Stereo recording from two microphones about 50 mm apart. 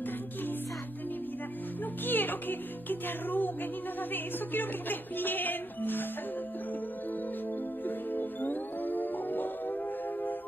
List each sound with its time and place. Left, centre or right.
2.0 s music: left
7.8 s music: left